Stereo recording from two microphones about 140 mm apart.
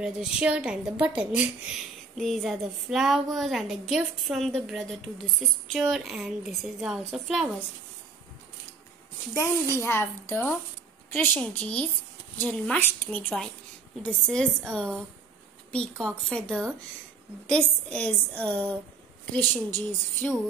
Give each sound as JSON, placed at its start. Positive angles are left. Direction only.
{"t": 0.0, "sound": "a woman's voice", "side_deg": -5}
{"t": 9.3, "sound": "a child's voice", "side_deg": 20}